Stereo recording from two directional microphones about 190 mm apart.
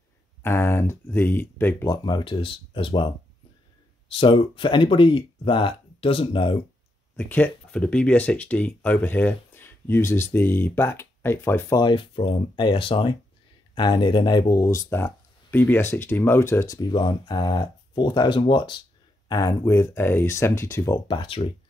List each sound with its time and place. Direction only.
0.4 s speech: 10° left (ahead or behind)
2.0 s speech: 25° left (ahead or behind)
4.1 s speech: 30° left (ahead or behind)
7.2 s speech: 10° left (ahead or behind)
11.8 s speech: 25° left (ahead or behind)
21.1 s speech: 30° left (ahead or behind)